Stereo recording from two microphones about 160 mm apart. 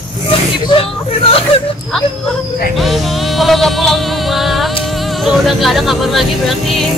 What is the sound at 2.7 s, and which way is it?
Music, centre (ahead or behind).